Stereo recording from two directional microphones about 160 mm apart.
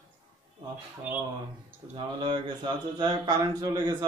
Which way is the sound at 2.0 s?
30° right (ahead or behind).